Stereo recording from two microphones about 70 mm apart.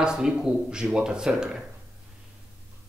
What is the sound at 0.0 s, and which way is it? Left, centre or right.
Speech, centre.